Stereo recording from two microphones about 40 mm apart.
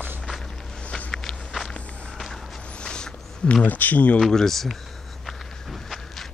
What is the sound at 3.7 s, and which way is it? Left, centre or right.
Speech, left.